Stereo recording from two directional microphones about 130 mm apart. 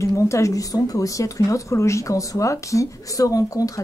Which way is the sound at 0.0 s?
25° left (ahead or behind).